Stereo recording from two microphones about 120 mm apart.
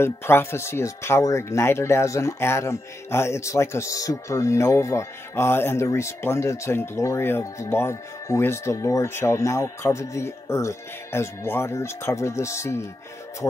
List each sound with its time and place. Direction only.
0.0 s speech: 20° left (ahead or behind)